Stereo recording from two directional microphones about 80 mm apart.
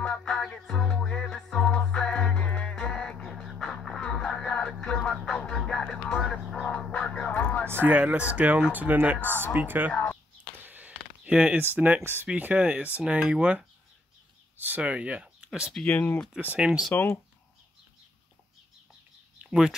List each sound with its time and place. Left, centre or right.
0.0 s music: centre
7.6 s speech: right
7.9 s speech: centre
10.6 s a sound: right
11.6 s speech: right
14.6 s speech: centre
15.9 s speech: left
16.3 s speech: centre